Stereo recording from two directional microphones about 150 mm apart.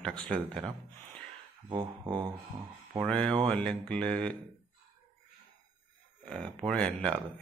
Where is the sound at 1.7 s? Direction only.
30° right (ahead or behind).